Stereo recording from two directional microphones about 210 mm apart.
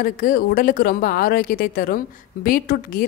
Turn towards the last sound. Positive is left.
turn(degrees=40)  # may be behind; listen again after turning